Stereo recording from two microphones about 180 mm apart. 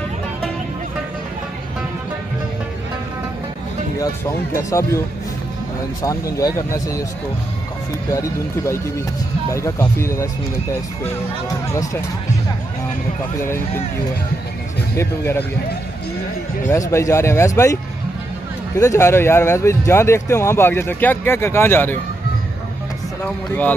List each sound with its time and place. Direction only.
4.6 s speech: 15° left (ahead or behind)
6.0 s speech: 20° left (ahead or behind)
9.5 s speech: 15° left (ahead or behind)
11.7 s speech: 20° left (ahead or behind)
15.0 s speech: 10° left (ahead or behind)
16.6 s speech: 15° left (ahead or behind)
18.8 s speech: 15° left (ahead or behind)
23.2 s speech: 10° left (ahead or behind)